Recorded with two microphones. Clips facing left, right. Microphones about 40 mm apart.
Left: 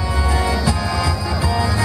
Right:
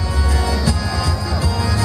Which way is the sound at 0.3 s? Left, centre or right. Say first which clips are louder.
Left 1 dB; centre.